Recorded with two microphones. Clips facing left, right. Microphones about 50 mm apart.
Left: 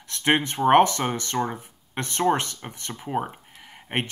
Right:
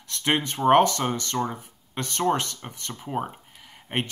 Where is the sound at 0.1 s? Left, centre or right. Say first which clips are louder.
Left 3 dB; centre.